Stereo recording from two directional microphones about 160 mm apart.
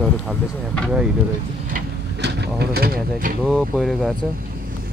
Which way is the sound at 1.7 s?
90° right.